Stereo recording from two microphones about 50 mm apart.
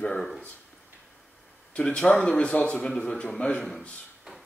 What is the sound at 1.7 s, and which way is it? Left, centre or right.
Speech, left.